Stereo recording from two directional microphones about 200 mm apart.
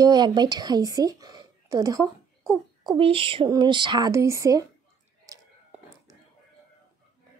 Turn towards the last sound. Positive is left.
turn(degrees=-15)  # may be behind; listen again after turning